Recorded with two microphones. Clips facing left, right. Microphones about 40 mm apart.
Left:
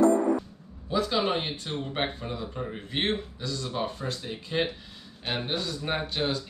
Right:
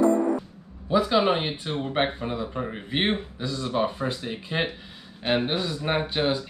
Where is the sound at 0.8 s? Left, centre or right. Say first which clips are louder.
Right 5 dB; centre.